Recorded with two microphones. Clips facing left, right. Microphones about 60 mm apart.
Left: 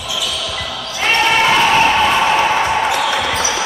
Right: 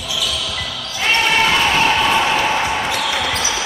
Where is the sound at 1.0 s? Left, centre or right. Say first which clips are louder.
Left 2 dB; centre.